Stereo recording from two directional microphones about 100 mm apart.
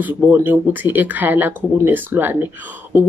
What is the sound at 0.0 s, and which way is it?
Speech, 20° right (ahead or behind).